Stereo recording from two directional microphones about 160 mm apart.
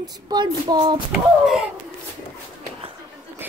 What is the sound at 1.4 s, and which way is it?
Speech, centre (ahead or behind).